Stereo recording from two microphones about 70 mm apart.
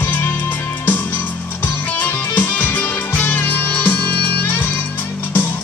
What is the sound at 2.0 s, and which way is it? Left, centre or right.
Music, left.